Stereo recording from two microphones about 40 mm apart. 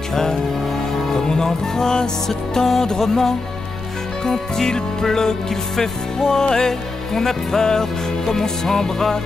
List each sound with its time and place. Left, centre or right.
0.1 s music: centre